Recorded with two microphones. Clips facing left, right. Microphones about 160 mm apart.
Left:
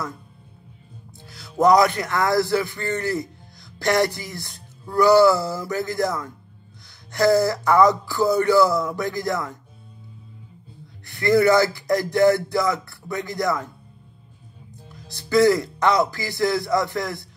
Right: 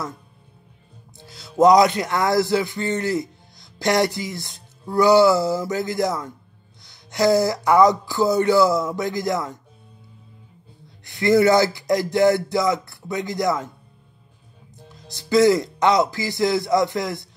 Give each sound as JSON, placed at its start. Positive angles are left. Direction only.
{"t": 1.3, "sound": "a man's voice", "side_deg": -20}
{"t": 7.1, "sound": "a sound", "side_deg": -15}
{"t": 11.1, "sound": "speech", "side_deg": -20}
{"t": 15.0, "sound": "speech", "side_deg": -20}